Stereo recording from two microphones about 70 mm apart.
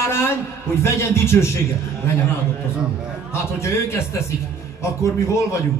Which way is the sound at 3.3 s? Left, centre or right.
Left.